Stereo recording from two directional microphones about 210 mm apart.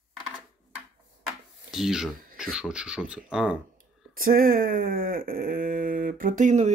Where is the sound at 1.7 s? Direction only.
Centre (ahead or behind).